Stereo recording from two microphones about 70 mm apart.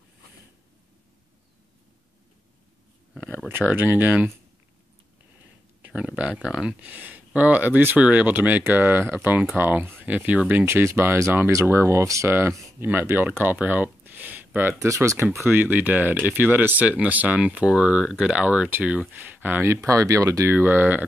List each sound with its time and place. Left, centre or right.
3.7 s speech: right
5.8 s a sound: centre
6.8 s speech: right
10.5 s speech: right
12.4 s speech: right
14.9 s speech: right
15.4 s speech: right
19.9 s speech: right
20.5 s speech: right